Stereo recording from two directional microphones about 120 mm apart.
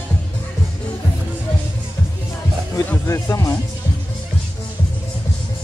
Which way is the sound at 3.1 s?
25° left (ahead or behind).